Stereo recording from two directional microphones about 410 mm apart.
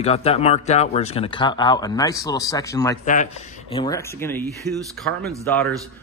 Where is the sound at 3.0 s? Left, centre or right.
Centre.